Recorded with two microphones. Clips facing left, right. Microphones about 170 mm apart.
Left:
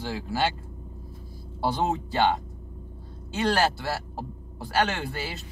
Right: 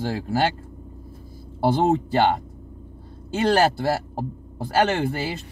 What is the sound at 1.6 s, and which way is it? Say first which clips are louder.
Speech: right 7 dB; 50° right (ahead or behind).